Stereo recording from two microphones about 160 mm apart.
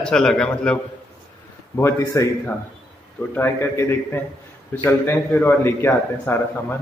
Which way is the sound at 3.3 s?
15° left (ahead or behind).